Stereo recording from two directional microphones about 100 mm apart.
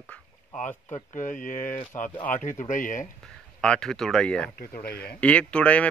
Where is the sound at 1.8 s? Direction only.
15° left (ahead or behind).